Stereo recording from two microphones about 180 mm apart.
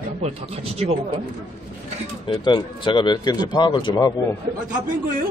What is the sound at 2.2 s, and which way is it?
Speech, 25° left (ahead or behind).